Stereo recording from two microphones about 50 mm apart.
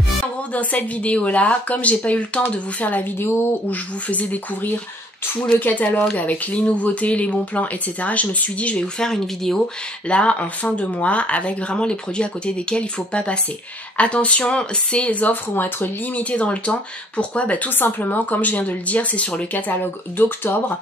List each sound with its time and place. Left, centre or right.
0.5 s speech: left
9.0 s speech: centre
10.0 s speech: left
15.5 s speech: left
16.2 s speech: left
19.8 s speech: left